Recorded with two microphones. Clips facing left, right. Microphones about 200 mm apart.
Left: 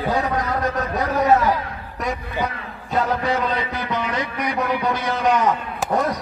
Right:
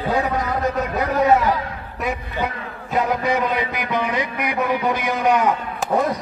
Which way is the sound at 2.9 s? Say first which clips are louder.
Right 1 dB; 15° right (ahead or behind).